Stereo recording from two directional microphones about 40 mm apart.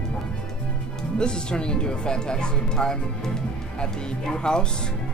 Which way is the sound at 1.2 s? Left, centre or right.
Left.